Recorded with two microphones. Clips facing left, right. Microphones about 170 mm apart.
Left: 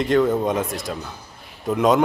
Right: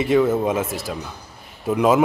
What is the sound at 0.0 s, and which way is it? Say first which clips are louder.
A man's voice: right 1 dB; 5° right (ahead or behind).